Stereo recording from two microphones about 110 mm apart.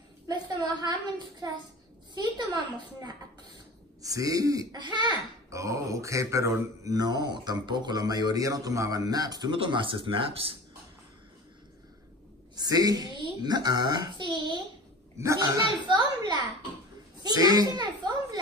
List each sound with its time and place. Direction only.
0.3 s a sound: 40° right (ahead or behind)
2.1 s speech: 40° right (ahead or behind)
5.5 s speech: 30° right (ahead or behind)
9.6 s speech: 50° right (ahead or behind)
12.5 s a child's voice: 35° right (ahead or behind)
15.1 s a child's voice: 30° right (ahead or behind)